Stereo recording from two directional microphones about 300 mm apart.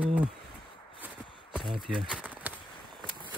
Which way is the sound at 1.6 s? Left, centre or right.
Centre.